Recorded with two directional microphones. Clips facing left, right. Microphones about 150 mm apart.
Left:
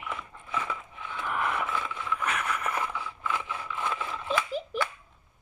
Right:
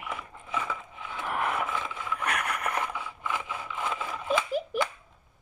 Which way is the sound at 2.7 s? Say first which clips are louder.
Even; 15° right (ahead or behind).